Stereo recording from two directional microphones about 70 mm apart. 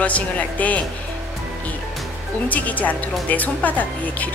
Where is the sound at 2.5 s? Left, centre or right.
Left.